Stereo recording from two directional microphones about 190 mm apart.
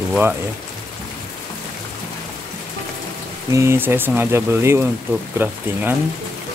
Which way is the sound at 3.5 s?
15° right (ahead or behind).